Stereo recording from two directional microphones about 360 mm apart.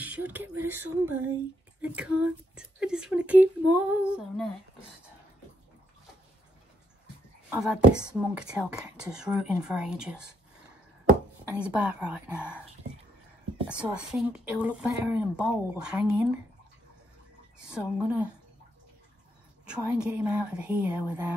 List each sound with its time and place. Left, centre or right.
0.0 s a sound: centre
0.7 s speech: centre
7.4 s speech: centre
11.5 s speech: centre
13.7 s speech: centre
17.6 s speech: centre
19.6 s speech: centre